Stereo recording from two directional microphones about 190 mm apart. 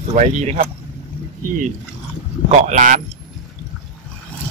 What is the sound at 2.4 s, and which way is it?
Speech, 40° right (ahead or behind).